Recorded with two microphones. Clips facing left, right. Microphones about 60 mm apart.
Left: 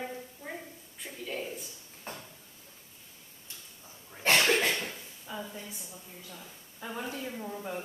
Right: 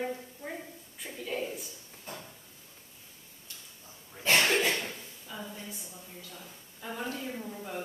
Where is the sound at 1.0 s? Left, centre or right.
Centre.